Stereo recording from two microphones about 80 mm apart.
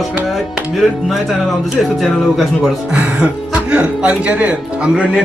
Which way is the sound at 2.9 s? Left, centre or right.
Centre.